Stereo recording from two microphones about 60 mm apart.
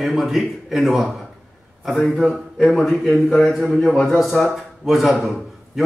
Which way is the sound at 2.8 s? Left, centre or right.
Centre.